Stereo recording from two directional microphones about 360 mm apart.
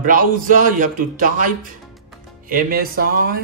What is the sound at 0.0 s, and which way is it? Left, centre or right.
Speech, right.